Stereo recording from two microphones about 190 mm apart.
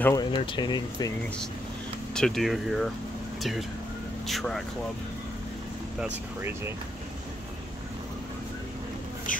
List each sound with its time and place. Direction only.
0.0 s speech: 20° left (ahead or behind)
2.1 s speech: centre (ahead or behind)
4.3 s speech: centre (ahead or behind)
5.9 s speech: 10° right (ahead or behind)